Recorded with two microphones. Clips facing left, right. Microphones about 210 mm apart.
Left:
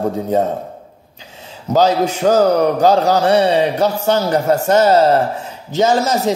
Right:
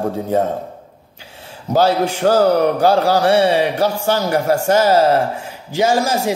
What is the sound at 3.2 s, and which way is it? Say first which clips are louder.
Speech: even; 20° left (ahead or behind).